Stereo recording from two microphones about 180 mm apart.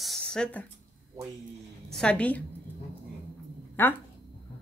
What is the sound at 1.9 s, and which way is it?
Speech, 5° left (ahead or behind).